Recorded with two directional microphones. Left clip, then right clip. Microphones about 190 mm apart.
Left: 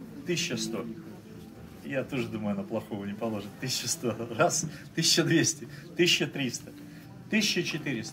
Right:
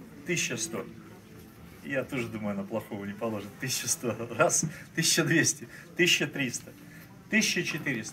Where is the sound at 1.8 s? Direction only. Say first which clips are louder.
Even; 15° left (ahead or behind).